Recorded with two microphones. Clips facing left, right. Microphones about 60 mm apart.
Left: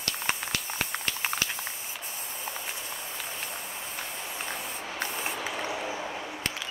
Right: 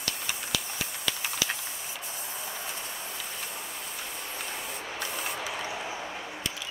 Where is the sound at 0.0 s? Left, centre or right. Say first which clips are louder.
Left 3 dB; left.